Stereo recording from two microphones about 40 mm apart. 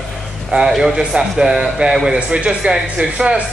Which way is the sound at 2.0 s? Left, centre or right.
Right.